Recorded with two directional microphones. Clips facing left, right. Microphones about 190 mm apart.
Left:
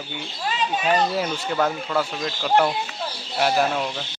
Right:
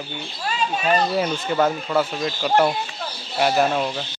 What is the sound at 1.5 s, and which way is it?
Speech, 10° right (ahead or behind).